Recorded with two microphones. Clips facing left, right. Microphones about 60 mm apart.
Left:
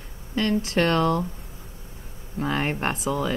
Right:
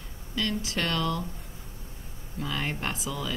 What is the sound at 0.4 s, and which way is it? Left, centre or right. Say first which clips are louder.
Speech: left 7 dB; left.